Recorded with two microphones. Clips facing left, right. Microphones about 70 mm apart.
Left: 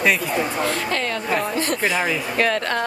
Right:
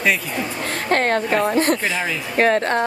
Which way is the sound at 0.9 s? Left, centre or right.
Right.